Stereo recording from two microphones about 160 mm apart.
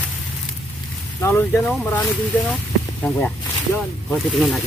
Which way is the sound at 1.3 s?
10° left (ahead or behind).